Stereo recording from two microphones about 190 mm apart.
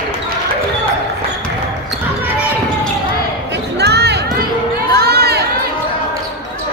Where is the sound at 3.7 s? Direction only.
60° right (ahead or behind).